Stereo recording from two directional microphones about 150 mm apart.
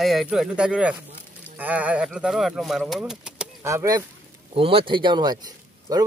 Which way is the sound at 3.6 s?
20° right (ahead or behind).